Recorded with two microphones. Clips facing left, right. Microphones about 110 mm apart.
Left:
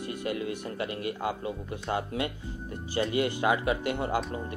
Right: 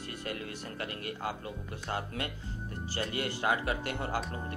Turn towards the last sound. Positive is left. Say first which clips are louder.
# left 5 dB
turn(degrees=20)  # may be behind; listen again after turning